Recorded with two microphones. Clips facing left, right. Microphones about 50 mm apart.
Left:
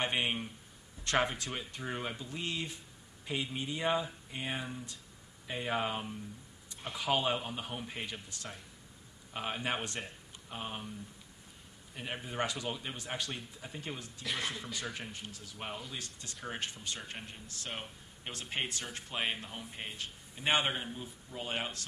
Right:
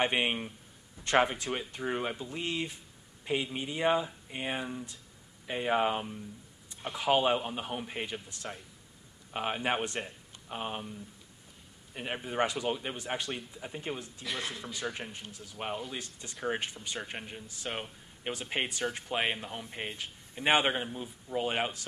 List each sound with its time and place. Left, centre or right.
0.0 s speech: right
11.9 s speech: centre
14.2 s speech: centre
14.7 s speech: centre
19.1 s speech: right